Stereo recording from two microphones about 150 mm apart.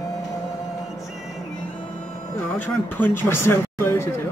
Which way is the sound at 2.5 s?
15° left (ahead or behind).